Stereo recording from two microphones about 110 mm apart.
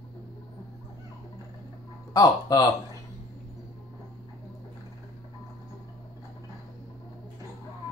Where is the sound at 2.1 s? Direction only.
35° left (ahead or behind).